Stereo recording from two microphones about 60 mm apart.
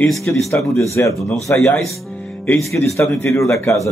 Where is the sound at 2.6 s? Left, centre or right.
Left.